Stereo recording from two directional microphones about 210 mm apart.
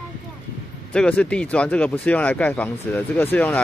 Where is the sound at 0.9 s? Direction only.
5° left (ahead or behind).